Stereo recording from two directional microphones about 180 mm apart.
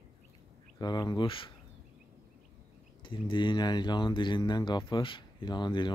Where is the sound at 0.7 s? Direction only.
25° left (ahead or behind).